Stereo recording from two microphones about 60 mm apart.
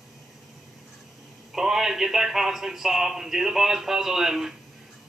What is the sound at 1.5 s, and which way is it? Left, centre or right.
A man's voice, centre.